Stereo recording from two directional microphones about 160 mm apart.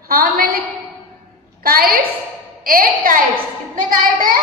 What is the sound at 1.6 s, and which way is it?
A woman's voice, 65° right (ahead or behind).